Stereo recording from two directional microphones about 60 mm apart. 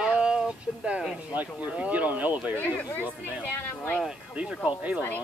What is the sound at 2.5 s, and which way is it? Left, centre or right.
Speech, left.